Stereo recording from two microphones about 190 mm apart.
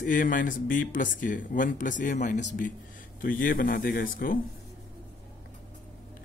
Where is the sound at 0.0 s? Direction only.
45° left (ahead or behind).